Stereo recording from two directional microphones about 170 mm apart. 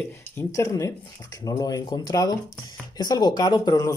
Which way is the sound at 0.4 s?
20° left (ahead or behind).